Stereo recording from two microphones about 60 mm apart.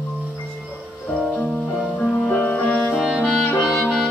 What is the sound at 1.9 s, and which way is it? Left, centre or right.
Music, left.